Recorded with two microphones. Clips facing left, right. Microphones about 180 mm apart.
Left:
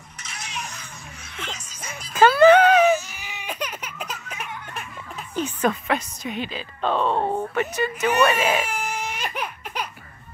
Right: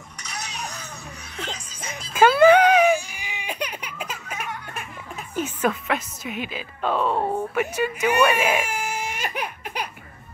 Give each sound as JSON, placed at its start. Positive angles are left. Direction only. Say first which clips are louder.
{"t": 0.5, "sound": "stir", "louder": "right 1 dB", "side_deg": -35}
{"t": 1.3, "sound": "speech", "louder": "right 2 dB", "side_deg": -35}
{"t": 2.1, "sound": "baby cry", "louder": "left 1 dB", "side_deg": -10}
{"t": 5.3, "sound": "speech", "louder": "left 1 dB", "side_deg": -5}
{"t": 7.5, "sound": "baby cry", "louder": "even", "side_deg": -10}